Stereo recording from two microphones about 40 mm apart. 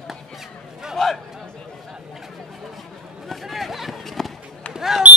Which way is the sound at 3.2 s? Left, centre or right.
Centre.